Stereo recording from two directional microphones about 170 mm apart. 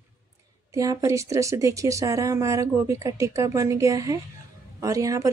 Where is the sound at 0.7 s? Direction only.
20° right (ahead or behind).